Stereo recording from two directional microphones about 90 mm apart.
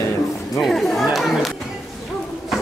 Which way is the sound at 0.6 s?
Centre (ahead or behind).